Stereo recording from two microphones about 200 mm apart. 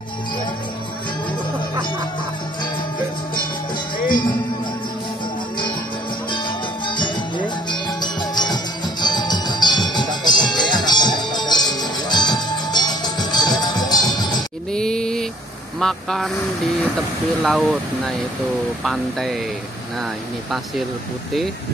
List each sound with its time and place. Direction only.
6.9 s music: 20° left (ahead or behind)
14.7 s a sound: 5° left (ahead or behind)
15.8 s speech: centre (ahead or behind)
17.4 s speech: centre (ahead or behind)